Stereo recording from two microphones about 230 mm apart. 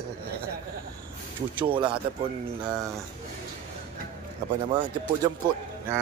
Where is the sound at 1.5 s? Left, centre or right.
Right.